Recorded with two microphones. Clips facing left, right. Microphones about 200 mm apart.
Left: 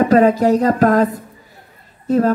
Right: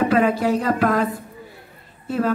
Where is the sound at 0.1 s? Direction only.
40° left (ahead or behind).